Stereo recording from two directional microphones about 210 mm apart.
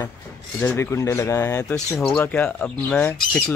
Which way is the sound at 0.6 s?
10° left (ahead or behind).